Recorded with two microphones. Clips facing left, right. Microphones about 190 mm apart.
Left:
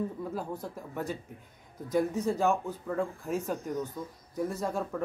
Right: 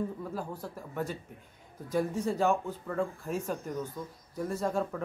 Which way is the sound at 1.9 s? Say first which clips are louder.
Left 2 dB; 15° left (ahead or behind).